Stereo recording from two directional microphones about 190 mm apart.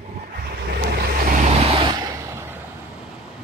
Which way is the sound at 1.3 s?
40° right (ahead or behind).